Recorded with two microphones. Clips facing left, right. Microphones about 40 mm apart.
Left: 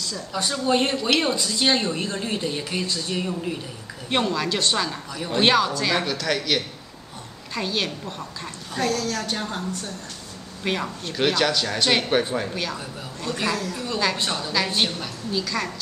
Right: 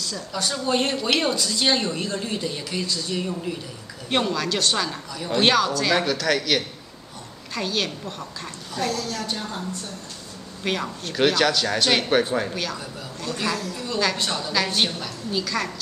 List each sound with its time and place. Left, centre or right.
0.0 s speech: centre; by 3.2 s left
3.2 s speech: centre
8.9 s speech: left
10.6 s a woman's voice: centre
14.4 s speech: centre